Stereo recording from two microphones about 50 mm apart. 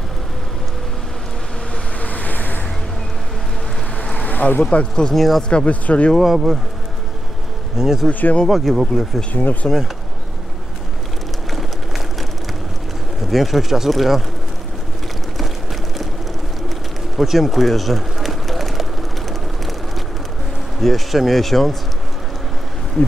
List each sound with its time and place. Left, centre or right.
2.0 s waves: left
4.0 s boat: left
4.6 s speech: centre
6.1 s speech: centre
7.7 s speech: centre
8.1 s speech: left
8.5 s speech: centre
9.3 s speech: left
11.5 s a sound: centre
13.3 s speech: centre
17.2 s a sound: centre
20.8 s speech: centre